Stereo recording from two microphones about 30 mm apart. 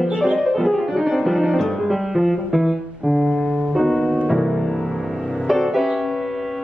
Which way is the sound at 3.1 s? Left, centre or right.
Centre.